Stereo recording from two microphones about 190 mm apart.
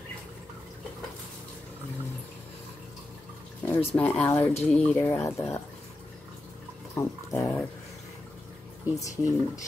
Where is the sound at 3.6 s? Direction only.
10° left (ahead or behind).